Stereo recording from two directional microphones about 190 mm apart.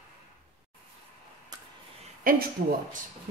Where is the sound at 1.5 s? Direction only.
20° right (ahead or behind).